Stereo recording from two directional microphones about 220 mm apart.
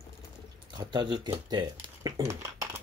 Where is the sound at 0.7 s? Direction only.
20° right (ahead or behind).